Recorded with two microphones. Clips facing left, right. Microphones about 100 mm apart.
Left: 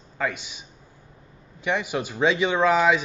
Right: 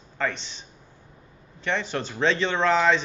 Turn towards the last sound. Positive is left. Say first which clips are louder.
# left 2 dB
turn(degrees=10)  # may be behind; listen again after turning